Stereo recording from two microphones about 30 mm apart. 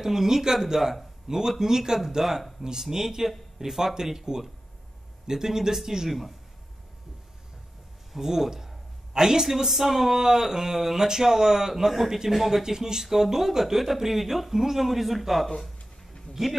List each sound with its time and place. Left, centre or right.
0.0 s a man's voice: centre
8.2 s a man's voice: centre
16.4 s a man's voice: centre